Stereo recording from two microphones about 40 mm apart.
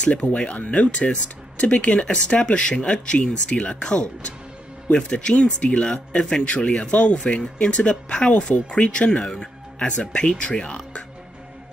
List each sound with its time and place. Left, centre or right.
0.2 s speech: left
0.6 s speech: left